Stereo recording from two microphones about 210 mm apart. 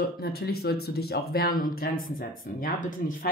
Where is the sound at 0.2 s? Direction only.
45° left (ahead or behind).